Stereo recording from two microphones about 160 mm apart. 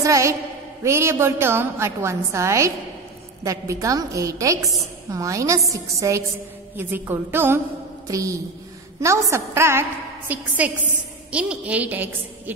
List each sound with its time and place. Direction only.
0.0 s a woman's voice: 20° right (ahead or behind)